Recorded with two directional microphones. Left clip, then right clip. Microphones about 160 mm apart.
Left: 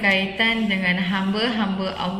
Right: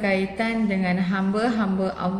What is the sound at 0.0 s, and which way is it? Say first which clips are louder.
A woman's voice: left 4 dB; 15° right (ahead or behind).